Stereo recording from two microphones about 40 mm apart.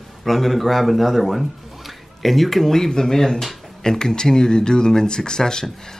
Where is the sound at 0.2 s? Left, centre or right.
Centre.